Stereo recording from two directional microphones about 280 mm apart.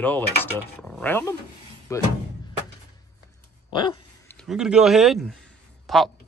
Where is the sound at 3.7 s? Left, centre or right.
Centre.